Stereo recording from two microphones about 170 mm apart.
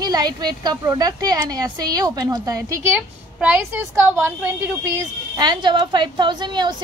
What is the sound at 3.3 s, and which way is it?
A woman's voice, 10° right (ahead or behind).